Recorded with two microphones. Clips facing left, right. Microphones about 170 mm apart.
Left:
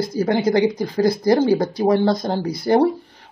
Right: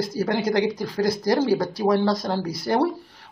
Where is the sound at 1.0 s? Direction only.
55° left (ahead or behind).